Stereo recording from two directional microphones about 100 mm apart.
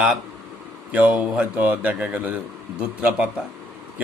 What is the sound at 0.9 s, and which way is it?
A man's voice, 10° right (ahead or behind).